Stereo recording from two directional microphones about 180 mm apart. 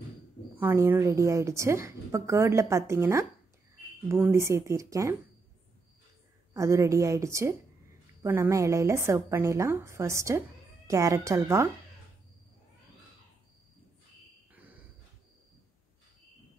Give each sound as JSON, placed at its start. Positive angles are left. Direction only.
{"t": 0.6, "sound": "a woman's voice", "side_deg": -10}
{"t": 6.5, "sound": "a woman's voice", "side_deg": -15}
{"t": 14.5, "sound": "a sound", "side_deg": -10}